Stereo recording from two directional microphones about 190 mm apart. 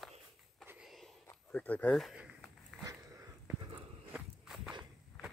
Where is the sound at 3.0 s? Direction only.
15° right (ahead or behind).